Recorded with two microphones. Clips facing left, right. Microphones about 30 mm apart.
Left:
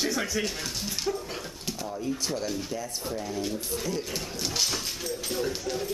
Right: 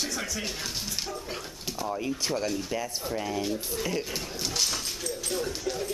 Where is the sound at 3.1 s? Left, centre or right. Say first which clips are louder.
Right 3 dB; right.